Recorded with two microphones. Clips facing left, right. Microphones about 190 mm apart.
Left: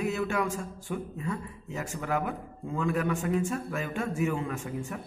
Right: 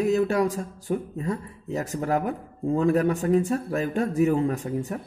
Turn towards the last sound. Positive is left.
turn(degrees=-35)  # may be behind; listen again after turning